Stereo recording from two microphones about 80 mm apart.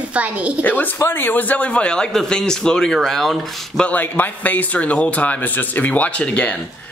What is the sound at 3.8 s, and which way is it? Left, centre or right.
A man's voice, left.